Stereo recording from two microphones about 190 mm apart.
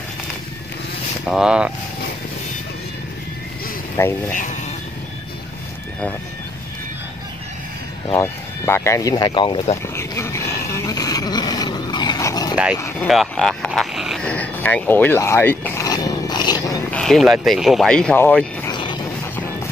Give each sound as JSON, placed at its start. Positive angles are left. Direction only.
{"t": 1.3, "sound": "speech", "side_deg": -5}
{"t": 4.0, "sound": "speech", "side_deg": 15}
{"t": 4.3, "sound": "speech", "side_deg": 40}
{"t": 8.2, "sound": "speech", "side_deg": 15}
{"t": 9.9, "sound": "a sound", "side_deg": 15}
{"t": 13.0, "sound": "speech", "side_deg": 0}
{"t": 17.0, "sound": "speech", "side_deg": 0}
{"t": 18.7, "sound": "a sound", "side_deg": 25}